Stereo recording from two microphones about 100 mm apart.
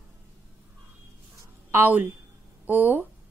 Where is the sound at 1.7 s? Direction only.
20° right (ahead or behind).